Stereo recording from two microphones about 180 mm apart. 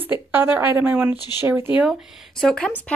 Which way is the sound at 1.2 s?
20° left (ahead or behind).